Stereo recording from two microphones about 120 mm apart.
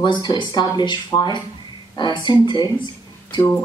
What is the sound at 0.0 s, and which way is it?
Speech, 40° left (ahead or behind).